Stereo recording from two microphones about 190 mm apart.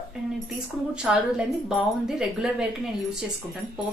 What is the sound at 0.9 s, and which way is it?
A woman's voice, 5° right (ahead or behind).